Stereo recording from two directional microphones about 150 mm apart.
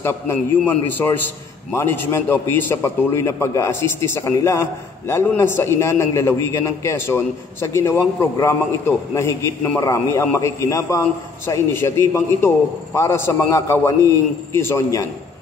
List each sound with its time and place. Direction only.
0.0 s a man's voice: 15° left (ahead or behind)